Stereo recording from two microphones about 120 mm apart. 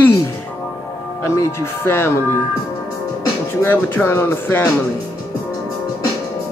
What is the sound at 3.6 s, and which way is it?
Music, 20° left (ahead or behind).